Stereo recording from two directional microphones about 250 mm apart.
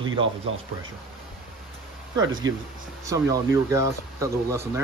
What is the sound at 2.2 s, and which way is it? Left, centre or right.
Speech, right.